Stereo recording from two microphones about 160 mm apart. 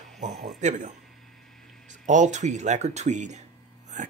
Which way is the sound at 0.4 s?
50° right (ahead or behind).